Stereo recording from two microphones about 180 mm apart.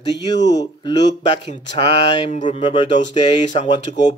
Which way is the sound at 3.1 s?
25° left (ahead or behind).